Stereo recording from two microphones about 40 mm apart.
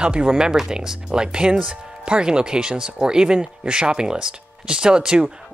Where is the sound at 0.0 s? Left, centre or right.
Right.